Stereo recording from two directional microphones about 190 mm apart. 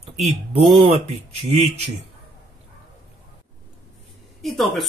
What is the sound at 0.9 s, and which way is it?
Speech, 35° right (ahead or behind).